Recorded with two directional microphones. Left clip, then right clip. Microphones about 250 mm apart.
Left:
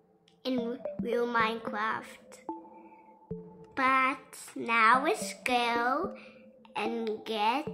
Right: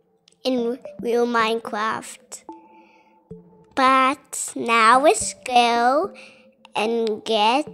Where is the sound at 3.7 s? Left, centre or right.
Right.